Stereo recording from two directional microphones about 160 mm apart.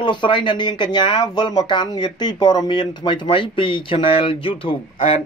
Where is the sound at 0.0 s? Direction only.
30° left (ahead or behind).